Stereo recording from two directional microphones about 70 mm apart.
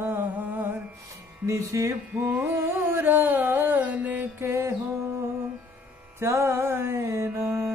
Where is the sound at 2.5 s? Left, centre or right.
Right.